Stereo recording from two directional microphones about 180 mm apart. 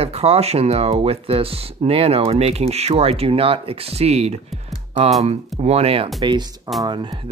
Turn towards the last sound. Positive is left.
turn(degrees=-25)  # may be behind; listen again after turning